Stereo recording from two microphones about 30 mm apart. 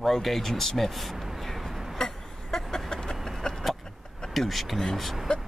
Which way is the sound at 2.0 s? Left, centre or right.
Left.